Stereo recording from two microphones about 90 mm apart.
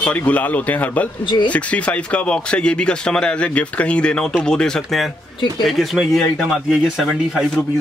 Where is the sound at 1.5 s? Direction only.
15° left (ahead or behind).